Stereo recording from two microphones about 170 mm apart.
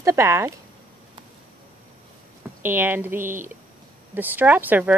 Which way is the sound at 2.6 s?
10° right (ahead or behind).